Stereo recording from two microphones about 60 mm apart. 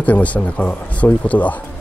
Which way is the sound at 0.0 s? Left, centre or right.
Left.